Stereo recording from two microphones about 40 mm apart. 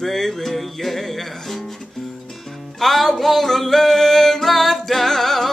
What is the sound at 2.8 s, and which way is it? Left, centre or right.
Music, centre.